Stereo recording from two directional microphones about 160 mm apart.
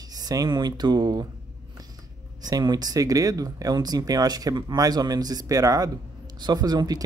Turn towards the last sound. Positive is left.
turn(degrees=-25)  # may be behind; listen again after turning